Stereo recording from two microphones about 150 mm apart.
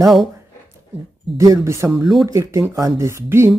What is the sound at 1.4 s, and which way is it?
Speech, 20° right (ahead or behind).